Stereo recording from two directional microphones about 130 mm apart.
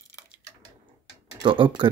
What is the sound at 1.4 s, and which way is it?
Speech, 35° right (ahead or behind).